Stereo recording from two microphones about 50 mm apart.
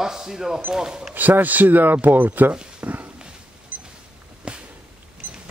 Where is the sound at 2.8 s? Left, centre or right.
Right.